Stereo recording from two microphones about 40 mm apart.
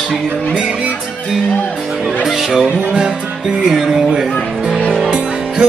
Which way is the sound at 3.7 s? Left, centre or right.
Centre.